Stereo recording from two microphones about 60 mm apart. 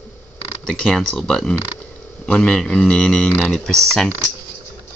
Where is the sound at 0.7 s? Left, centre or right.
Centre.